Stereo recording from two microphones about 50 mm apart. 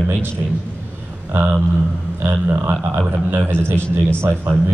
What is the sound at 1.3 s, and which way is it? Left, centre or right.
A man's voice, right.